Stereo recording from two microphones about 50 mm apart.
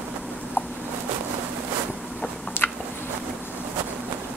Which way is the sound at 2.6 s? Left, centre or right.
Left.